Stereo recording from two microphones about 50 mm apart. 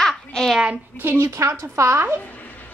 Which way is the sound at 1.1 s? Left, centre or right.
Right.